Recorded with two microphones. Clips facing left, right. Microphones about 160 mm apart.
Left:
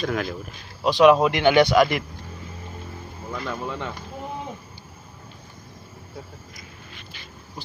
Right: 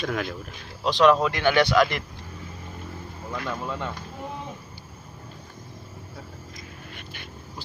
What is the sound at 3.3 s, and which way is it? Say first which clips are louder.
Speech: left 1 dB; centre (ahead or behind).